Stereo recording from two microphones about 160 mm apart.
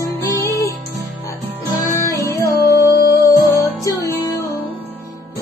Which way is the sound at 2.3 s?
20° left (ahead or behind).